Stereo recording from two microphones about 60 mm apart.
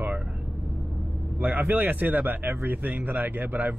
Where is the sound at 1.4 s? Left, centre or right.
Right.